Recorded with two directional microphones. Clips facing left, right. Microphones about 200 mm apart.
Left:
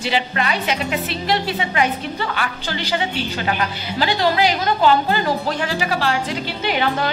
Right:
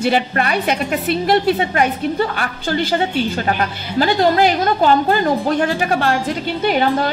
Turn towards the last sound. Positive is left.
turn(degrees=-45)  # may be behind; listen again after turning